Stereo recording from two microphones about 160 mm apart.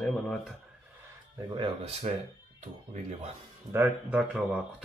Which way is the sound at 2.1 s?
45° right (ahead or behind).